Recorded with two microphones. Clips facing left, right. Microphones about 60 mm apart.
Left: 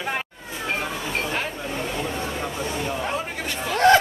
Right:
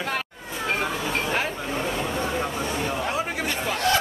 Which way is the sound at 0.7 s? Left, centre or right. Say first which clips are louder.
Right 2 dB; centre.